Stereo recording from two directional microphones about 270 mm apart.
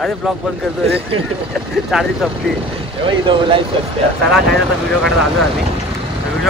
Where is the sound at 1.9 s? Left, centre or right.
Centre.